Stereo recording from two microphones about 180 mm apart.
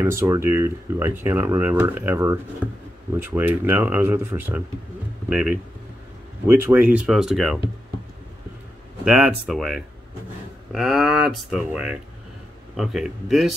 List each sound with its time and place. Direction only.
0.0 s speech: 15° right (ahead or behind)
9.0 s speech: 5° right (ahead or behind)